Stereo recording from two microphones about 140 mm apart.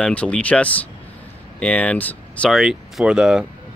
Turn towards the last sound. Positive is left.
turn(degrees=-5)  # may be behind; listen again after turning